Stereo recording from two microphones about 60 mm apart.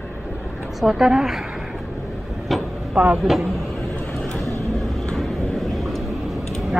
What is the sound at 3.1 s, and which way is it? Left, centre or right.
Speech, centre.